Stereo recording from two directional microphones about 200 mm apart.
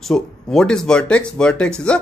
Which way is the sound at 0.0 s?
Centre (ahead or behind).